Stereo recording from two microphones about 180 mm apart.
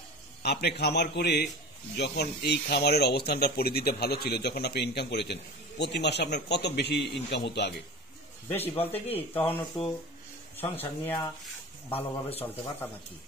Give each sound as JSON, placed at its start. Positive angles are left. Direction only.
{"t": 0.4, "sound": "speech", "side_deg": 65}
{"t": 8.7, "sound": "speech", "side_deg": 10}
{"t": 12.4, "sound": "speech", "side_deg": 10}